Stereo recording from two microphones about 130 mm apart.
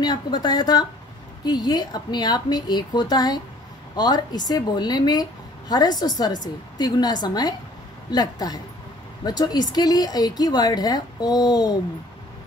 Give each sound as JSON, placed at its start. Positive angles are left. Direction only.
{"t": 0.0, "sound": "speech", "side_deg": 35}